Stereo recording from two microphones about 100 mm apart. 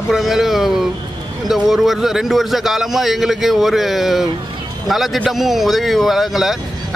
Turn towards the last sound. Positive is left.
turn(degrees=0)  # may be behind; listen again after turning